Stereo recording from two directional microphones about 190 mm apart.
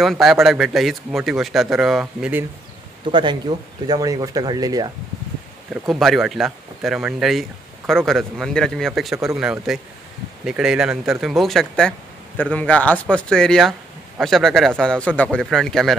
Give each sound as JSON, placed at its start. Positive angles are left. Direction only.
{"t": 0.0, "sound": "speech", "side_deg": 0}
{"t": 3.1, "sound": "speech", "side_deg": -25}
{"t": 5.9, "sound": "speech", "side_deg": 0}